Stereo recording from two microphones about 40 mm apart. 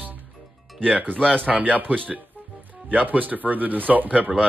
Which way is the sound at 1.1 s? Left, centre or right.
Left.